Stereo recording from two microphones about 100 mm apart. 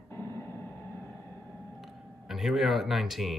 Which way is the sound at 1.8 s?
Centre (ahead or behind).